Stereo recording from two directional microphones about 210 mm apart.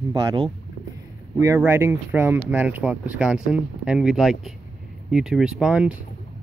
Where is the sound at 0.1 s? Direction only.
20° right (ahead or behind).